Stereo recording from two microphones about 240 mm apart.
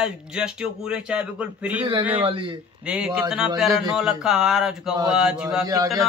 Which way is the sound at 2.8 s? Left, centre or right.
Centre.